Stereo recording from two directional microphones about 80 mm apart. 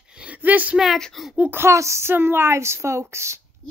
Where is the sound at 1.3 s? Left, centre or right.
Centre.